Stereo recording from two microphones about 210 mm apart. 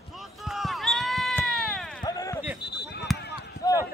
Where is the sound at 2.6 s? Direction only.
55° left (ahead or behind).